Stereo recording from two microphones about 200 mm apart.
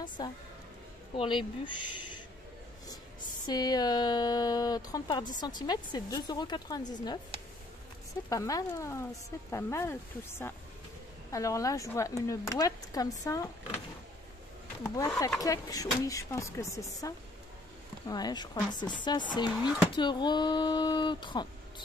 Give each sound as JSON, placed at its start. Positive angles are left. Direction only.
{"t": 0.2, "sound": "speech", "side_deg": 20}
{"t": 3.4, "sound": "speech", "side_deg": 20}
{"t": 8.3, "sound": "speech", "side_deg": 15}
{"t": 11.3, "sound": "speech", "side_deg": 15}
{"t": 15.0, "sound": "speech", "side_deg": 15}